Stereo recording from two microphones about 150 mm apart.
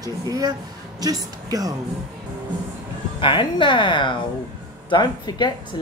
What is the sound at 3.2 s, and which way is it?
A woman's voice, 35° left (ahead or behind).